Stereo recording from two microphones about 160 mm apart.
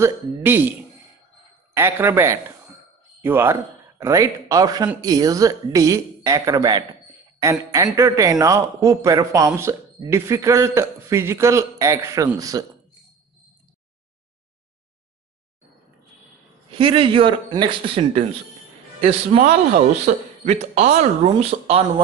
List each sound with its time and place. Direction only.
0.0 s a man's voice: 15° right (ahead or behind)
16.7 s a man's voice: 35° right (ahead or behind)
20.1 s a man's voice: 60° right (ahead or behind)
20.4 s a man's voice: 45° right (ahead or behind)